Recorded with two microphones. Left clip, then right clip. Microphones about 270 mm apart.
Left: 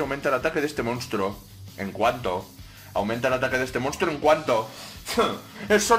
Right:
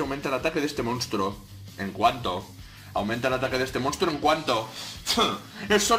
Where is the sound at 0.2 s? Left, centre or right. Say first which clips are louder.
Left 4 dB; centre.